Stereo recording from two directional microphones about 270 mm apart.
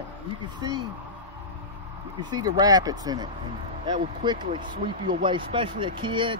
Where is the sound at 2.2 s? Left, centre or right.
Centre.